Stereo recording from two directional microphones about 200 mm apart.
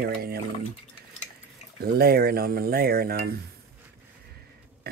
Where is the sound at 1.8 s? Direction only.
50° right (ahead or behind).